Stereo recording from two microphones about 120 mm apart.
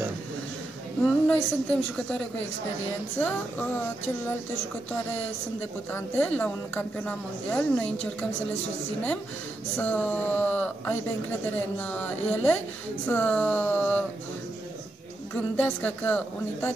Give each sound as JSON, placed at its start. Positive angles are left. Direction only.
{"t": 1.2, "sound": "speech", "side_deg": 10}
{"t": 5.9, "sound": "speech", "side_deg": 15}
{"t": 9.8, "sound": "speech", "side_deg": 15}
{"t": 15.3, "sound": "speech", "side_deg": 15}